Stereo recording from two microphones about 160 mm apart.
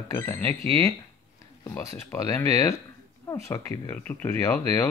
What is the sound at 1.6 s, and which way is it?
Speech, 20° left (ahead or behind).